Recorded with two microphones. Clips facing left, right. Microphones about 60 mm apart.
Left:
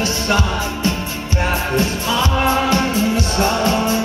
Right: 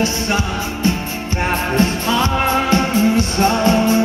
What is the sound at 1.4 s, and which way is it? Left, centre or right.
Music, right.